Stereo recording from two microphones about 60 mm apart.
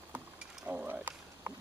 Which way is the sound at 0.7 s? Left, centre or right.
Right.